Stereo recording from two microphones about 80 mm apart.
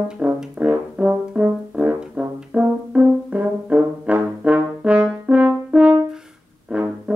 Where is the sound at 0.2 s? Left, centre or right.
Centre.